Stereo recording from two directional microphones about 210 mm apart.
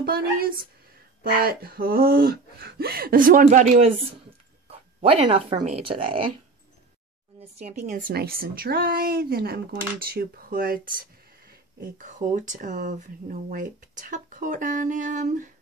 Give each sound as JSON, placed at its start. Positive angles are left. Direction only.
{"t": 0.0, "sound": "a woman's voice", "side_deg": -45}
{"t": 4.6, "sound": "a sound", "side_deg": -30}
{"t": 7.3, "sound": "a woman's voice", "side_deg": -35}
{"t": 12.0, "sound": "speech", "side_deg": -40}